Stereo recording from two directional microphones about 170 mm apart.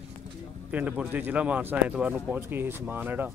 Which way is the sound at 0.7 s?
10° right (ahead or behind).